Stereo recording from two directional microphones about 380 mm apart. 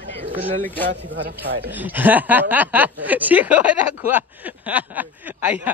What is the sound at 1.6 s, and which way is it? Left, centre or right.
Speech, centre.